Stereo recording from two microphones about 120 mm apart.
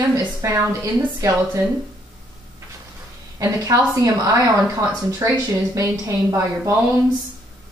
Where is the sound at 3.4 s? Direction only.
30° right (ahead or behind).